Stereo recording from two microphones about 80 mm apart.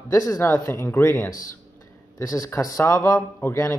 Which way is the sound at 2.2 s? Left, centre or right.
Left.